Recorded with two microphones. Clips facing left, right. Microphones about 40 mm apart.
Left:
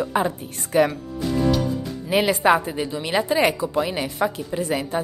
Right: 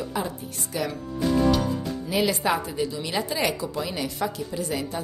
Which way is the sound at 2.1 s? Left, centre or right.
Left.